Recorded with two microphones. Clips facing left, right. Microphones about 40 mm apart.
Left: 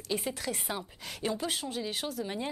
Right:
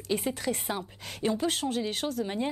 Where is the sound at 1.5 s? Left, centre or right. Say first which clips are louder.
Right 5 dB; right.